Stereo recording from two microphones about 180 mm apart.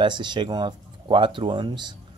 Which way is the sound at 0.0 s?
25° right (ahead or behind).